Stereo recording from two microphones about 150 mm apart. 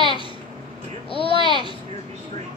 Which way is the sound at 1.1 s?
35° left (ahead or behind).